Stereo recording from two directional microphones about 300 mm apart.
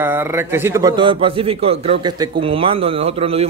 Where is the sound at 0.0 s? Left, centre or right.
Centre.